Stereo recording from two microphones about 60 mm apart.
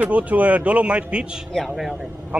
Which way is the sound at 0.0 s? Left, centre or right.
Right.